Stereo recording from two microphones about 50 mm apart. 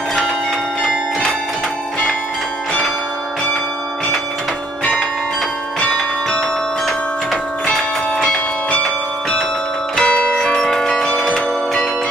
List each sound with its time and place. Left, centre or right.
5.8 s bell: centre
7.6 s church bell: centre
8.8 s bell: centre
9.9 s music: left